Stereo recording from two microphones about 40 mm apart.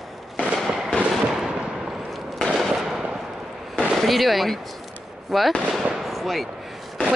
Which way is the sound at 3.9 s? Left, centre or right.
Centre.